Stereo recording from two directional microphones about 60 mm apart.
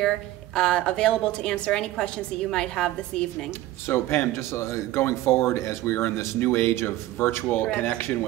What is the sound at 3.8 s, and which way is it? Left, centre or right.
Speech, left.